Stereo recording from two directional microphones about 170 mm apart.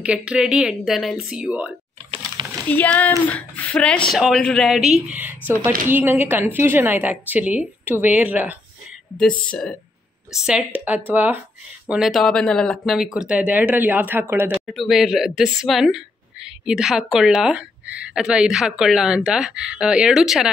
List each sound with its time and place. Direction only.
0.0 s a woman's voice: 5° right (ahead or behind)
2.4 s a sound: 25° right (ahead or behind)
2.7 s a woman's voice: 10° left (ahead or behind); by 8.5 s 10° right (ahead or behind)
9.1 s a woman's voice: 5° left (ahead or behind); by 14.5 s 15° right (ahead or behind)
14.7 s a woman's voice: centre (ahead or behind)